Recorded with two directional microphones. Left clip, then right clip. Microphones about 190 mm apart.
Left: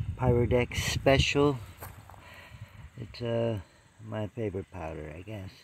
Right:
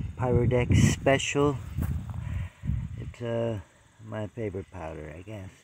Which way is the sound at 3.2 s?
5° left (ahead or behind).